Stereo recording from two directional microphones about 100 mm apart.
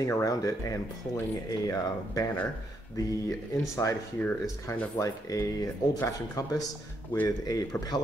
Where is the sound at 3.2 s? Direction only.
30° left (ahead or behind).